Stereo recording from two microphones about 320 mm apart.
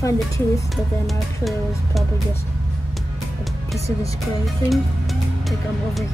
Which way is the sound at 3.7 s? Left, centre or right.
Centre.